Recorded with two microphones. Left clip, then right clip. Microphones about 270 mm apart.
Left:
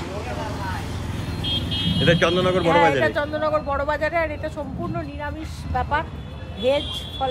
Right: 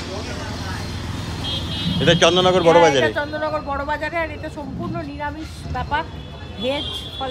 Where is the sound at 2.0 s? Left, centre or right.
Centre.